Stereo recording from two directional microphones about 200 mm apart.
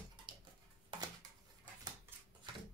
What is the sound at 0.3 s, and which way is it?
Tick-tock, 25° right (ahead or behind).